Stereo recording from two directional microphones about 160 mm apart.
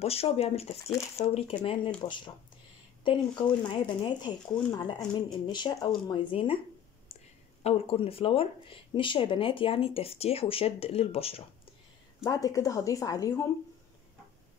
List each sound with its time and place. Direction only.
0.0 s speech: 40° left (ahead or behind)
7.6 s speech: 35° left (ahead or behind)
12.3 s speech: 20° left (ahead or behind)